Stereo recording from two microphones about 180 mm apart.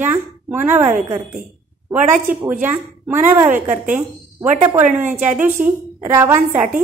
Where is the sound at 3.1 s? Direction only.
10° right (ahead or behind).